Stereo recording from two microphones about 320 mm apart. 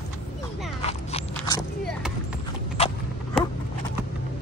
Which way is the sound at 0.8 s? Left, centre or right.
Centre.